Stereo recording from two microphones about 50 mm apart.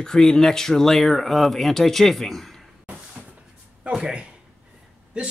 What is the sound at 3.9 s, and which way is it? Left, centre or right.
Speech, centre.